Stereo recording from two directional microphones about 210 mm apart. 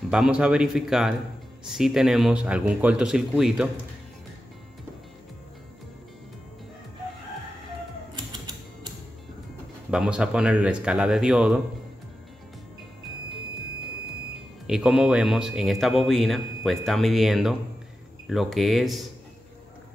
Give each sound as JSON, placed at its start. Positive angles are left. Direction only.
{"t": 0.1, "sound": "speech", "side_deg": -5}
{"t": 8.3, "sound": "typewriter", "side_deg": -20}
{"t": 9.8, "sound": "speech", "side_deg": -5}
{"t": 14.7, "sound": "speech", "side_deg": -5}